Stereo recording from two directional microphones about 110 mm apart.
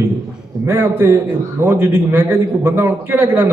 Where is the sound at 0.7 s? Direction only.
20° right (ahead or behind).